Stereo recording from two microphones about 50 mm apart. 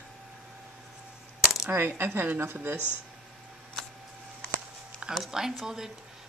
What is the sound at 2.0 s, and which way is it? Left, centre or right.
Speech, right.